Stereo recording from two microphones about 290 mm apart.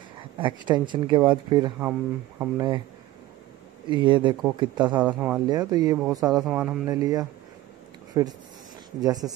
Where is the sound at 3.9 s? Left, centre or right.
Centre.